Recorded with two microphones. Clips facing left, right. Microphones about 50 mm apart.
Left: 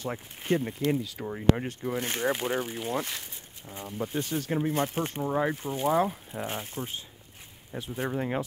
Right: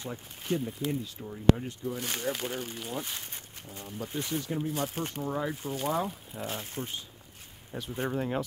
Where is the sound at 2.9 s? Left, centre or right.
Left.